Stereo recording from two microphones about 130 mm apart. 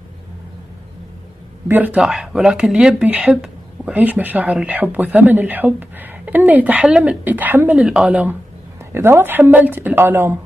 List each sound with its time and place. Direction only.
1.7 s speech: 15° right (ahead or behind)